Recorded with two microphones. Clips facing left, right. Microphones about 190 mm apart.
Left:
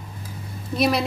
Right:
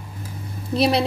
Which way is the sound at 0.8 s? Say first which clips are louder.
Right 2 dB; 30° right (ahead or behind).